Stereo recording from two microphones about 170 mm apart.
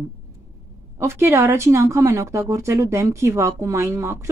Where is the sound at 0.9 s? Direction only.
15° right (ahead or behind).